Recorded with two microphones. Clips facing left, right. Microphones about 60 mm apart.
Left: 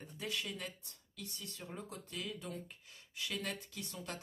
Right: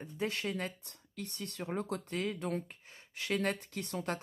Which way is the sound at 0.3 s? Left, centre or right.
Right.